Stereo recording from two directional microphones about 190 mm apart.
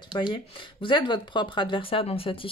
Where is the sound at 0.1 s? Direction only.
25° left (ahead or behind).